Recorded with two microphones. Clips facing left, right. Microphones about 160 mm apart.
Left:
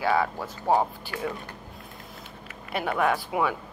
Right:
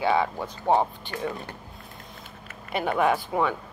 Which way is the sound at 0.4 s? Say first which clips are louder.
Right 1 dB; 5° left (ahead or behind).